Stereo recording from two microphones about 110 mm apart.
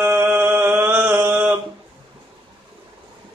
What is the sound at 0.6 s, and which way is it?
Mantra, 20° right (ahead or behind).